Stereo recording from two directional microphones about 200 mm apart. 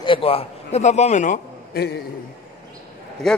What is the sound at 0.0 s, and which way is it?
A man's voice, 25° left (ahead or behind).